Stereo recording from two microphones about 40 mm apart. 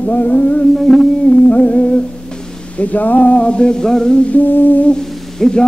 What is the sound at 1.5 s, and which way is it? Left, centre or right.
Humming, left.